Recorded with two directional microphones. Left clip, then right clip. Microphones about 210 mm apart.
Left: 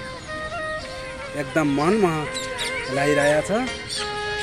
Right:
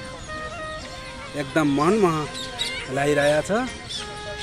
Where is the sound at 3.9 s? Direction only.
55° left (ahead or behind).